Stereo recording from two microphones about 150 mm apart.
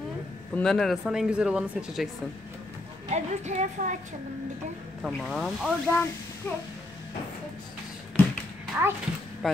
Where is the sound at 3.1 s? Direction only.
50° right (ahead or behind).